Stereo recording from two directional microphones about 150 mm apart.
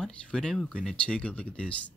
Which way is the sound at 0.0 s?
5° left (ahead or behind).